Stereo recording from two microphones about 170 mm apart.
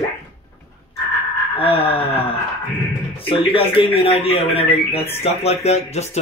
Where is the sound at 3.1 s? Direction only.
30° left (ahead or behind).